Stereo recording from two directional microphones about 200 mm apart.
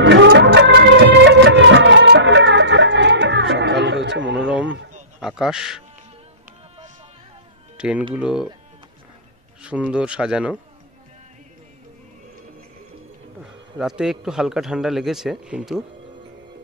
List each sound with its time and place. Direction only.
0.0 s music of bollywood: 65° right (ahead or behind)
4.5 s a sound: 5° right (ahead or behind)
5.2 s a man's voice: 5° right (ahead or behind)
7.7 s music: 5° right (ahead or behind)
8.1 s speech: 5° right (ahead or behind)
9.6 s speech: 5° right (ahead or behind)
13.4 s speech: 5° right (ahead or behind)